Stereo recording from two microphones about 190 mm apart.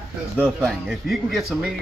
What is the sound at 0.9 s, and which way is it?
Speech, centre (ahead or behind).